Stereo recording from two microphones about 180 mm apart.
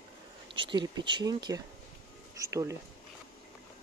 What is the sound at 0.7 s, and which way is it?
Speech, 25° right (ahead or behind).